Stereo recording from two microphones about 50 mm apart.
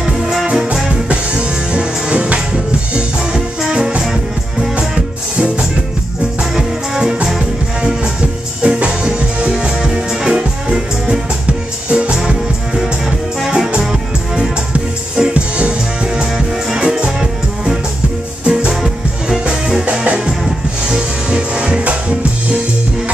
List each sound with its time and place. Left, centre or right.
0.0 s music: centre
1.0 s music: centre
4.0 s music: centre
4.7 s music: centre
8.6 s music: centre
13.6 s music: centre
18.4 s music: right
18.7 s music: centre
19.8 s music: centre